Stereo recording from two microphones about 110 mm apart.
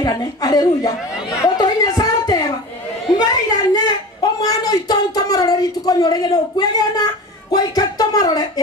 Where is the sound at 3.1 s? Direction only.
35° left (ahead or behind).